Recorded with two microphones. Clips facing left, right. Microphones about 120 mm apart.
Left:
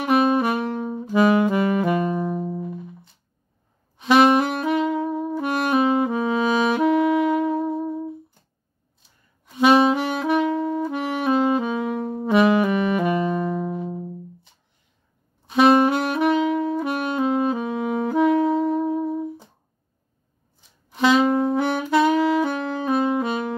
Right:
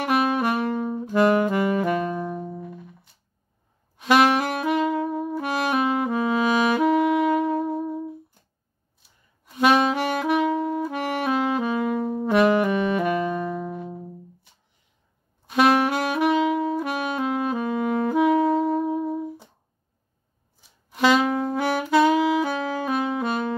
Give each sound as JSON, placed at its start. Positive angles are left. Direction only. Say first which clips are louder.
{"t": 0.0, "sound": "saxophone", "louder": "left 3 dB", "side_deg": 0}
{"t": 4.0, "sound": "saxophone", "louder": "left 3 dB", "side_deg": 0}
{"t": 9.5, "sound": "saxophone", "louder": "left 3 dB", "side_deg": 0}
{"t": 11.2, "sound": "saxophone", "louder": "left 5 dB", "side_deg": 25}
{"t": 11.6, "sound": "saxophone", "louder": "right 1 dB", "side_deg": 0}
{"t": 15.5, "sound": "saxophone", "louder": "left 3 dB", "side_deg": 0}
{"t": 17.2, "sound": "saxophone", "louder": "left 6 dB", "side_deg": 25}
{"t": 17.5, "sound": "saxophone", "louder": "even", "side_deg": 0}
{"t": 20.9, "sound": "saxophone", "louder": "left 2 dB", "side_deg": 0}
{"t": 23.0, "sound": "music", "louder": "left 3 dB", "side_deg": 0}